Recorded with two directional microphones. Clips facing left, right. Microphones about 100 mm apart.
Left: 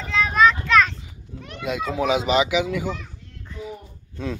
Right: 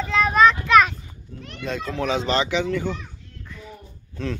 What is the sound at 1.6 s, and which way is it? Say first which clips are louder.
Speech: left 3 dB; 10° left (ahead or behind).